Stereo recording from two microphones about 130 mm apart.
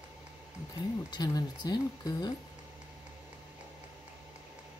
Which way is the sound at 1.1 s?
30° left (ahead or behind).